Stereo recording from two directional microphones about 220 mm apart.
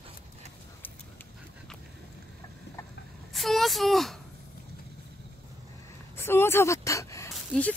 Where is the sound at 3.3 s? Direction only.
Centre (ahead or behind).